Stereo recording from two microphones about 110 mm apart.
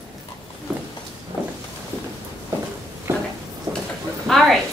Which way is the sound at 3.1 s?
25° right (ahead or behind).